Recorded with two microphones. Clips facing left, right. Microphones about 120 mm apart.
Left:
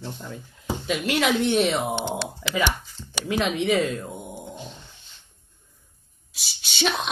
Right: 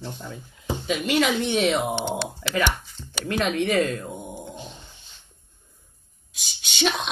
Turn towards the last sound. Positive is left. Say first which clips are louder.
# right 1 dB
turn(degrees=0)  # may be behind; listen again after turning